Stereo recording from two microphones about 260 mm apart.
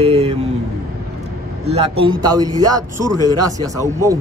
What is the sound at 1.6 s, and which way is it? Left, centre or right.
Speech, right.